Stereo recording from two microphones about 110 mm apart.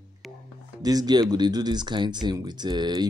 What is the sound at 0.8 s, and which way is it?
Speech, 35° right (ahead or behind).